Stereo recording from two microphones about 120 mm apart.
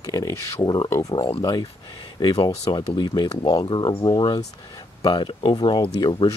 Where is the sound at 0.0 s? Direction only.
30° left (ahead or behind).